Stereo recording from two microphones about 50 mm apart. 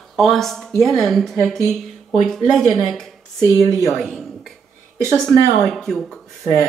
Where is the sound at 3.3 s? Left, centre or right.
Right.